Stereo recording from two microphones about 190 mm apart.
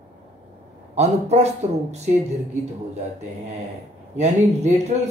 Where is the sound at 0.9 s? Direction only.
35° right (ahead or behind).